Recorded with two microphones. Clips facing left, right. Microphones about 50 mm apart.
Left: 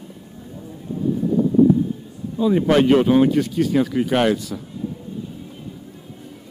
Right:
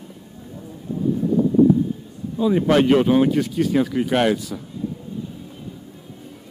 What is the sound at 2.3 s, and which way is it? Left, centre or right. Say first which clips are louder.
Speech: left 1 dB; centre.